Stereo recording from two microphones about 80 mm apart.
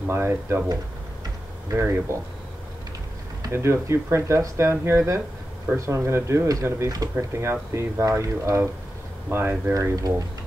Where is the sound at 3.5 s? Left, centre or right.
Right.